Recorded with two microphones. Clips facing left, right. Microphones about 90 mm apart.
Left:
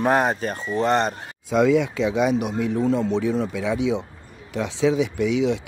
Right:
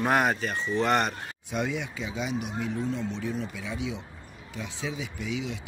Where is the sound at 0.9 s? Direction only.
30° left (ahead or behind).